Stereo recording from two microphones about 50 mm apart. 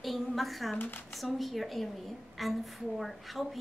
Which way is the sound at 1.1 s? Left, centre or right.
Centre.